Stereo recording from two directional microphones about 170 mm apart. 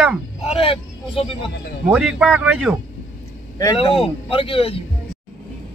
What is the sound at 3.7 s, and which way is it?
Speech, 35° left (ahead or behind).